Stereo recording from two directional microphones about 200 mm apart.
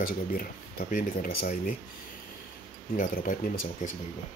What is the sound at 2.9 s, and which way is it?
Speech, 45° left (ahead or behind).